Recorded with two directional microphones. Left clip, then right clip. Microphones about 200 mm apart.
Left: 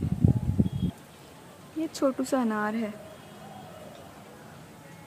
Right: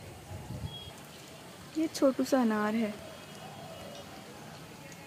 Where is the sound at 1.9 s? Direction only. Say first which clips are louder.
Left 1 dB; centre (ahead or behind).